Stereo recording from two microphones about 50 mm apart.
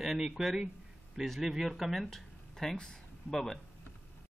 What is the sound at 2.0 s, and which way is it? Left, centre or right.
Speech, centre.